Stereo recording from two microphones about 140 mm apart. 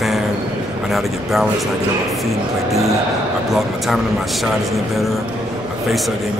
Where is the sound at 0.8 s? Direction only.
Centre (ahead or behind).